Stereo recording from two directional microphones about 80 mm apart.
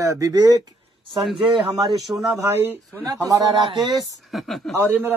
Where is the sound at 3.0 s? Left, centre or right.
Right.